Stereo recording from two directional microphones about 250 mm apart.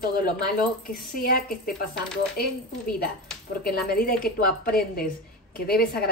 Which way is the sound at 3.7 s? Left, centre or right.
Left.